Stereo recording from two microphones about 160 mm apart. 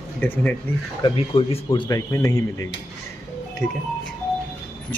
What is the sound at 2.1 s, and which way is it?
Speech, 20° left (ahead or behind).